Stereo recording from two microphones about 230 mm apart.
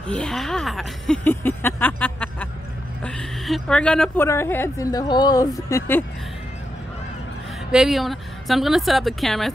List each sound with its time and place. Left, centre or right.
0.1 s a woman's voice: centre
7.7 s a woman's voice: centre